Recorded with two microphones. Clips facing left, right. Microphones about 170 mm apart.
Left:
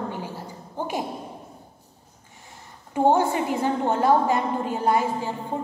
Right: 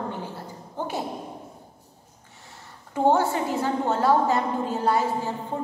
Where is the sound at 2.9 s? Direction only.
15° left (ahead or behind).